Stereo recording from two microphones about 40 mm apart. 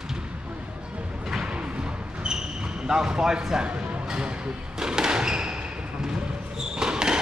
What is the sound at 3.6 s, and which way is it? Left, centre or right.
Music, right.